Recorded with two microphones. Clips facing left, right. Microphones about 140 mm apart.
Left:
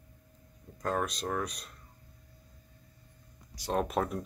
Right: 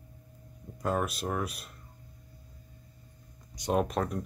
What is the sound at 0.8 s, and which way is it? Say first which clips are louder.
Speech: right 2 dB; 5° right (ahead or behind).